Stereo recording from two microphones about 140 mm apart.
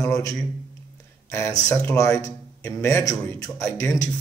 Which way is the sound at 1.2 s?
20° left (ahead or behind).